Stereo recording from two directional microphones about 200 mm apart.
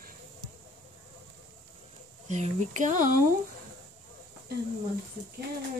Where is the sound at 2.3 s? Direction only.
35° right (ahead or behind).